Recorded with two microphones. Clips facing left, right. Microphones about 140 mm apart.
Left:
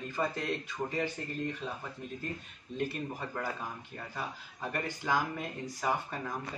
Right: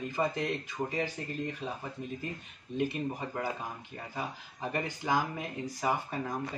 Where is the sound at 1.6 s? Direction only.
10° right (ahead or behind).